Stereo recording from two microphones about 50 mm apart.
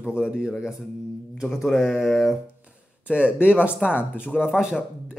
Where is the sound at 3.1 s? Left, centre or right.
Right.